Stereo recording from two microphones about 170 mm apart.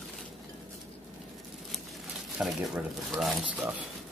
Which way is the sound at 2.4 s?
Centre (ahead or behind).